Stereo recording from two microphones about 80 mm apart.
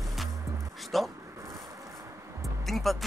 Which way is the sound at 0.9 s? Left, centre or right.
Centre.